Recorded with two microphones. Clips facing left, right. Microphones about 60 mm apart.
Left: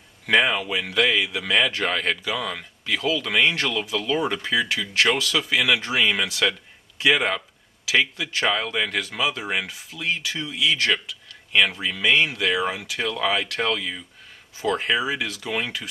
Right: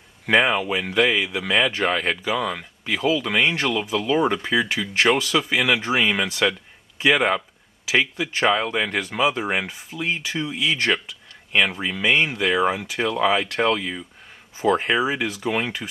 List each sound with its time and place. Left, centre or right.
0.3 s speech: centre